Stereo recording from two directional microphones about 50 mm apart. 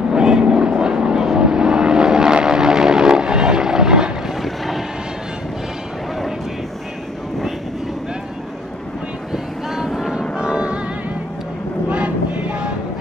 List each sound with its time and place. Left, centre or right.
0.1 s vehicle: centre
4.4 s vehicle: centre
9.8 s vehicle: centre
10.3 s music: centre
11.9 s vehicle: right